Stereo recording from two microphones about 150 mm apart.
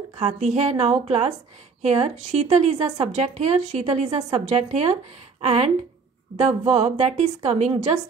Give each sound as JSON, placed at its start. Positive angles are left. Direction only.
{"t": 0.2, "sound": "a woman's voice", "side_deg": -50}